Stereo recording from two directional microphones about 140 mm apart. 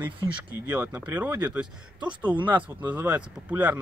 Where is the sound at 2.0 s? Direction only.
35° right (ahead or behind).